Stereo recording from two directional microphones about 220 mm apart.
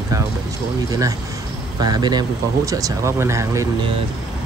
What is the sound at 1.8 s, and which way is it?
Speech, 20° right (ahead or behind).